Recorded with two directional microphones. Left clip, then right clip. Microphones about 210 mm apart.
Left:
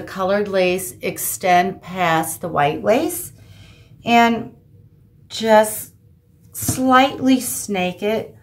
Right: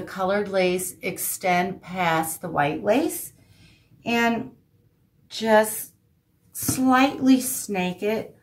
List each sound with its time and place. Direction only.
0.0 s a woman's voice: 20° left (ahead or behind)